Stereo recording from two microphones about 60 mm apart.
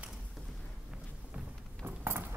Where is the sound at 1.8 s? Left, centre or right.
Right.